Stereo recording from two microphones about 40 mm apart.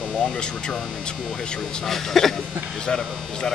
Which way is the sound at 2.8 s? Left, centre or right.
Centre.